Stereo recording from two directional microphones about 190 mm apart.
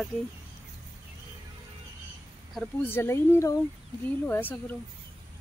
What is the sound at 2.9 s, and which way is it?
Speech, 10° left (ahead or behind).